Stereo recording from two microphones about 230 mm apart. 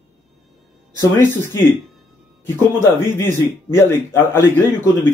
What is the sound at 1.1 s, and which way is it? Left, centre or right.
Speech, centre.